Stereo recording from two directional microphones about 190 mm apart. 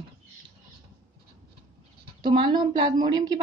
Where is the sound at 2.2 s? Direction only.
25° right (ahead or behind).